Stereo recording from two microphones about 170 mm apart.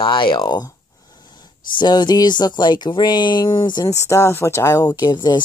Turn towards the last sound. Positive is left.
turn(degrees=25)  # may be behind; listen again after turning